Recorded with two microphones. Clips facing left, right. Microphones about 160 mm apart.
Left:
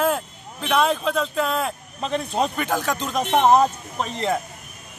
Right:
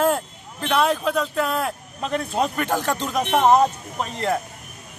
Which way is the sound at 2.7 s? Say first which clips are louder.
Right 1 dB; 15° right (ahead or behind).